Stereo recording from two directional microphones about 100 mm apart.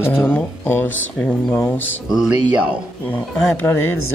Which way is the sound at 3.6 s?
25° left (ahead or behind).